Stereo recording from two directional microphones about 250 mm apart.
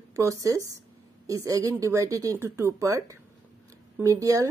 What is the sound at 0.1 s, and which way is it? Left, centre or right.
Speech, centre.